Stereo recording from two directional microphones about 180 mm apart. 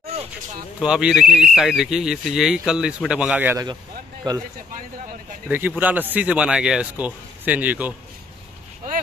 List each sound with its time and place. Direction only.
0.7 s speech: 5° right (ahead or behind)
4.2 s speech: 25° right (ahead or behind)
5.5 s speech: 10° right (ahead or behind)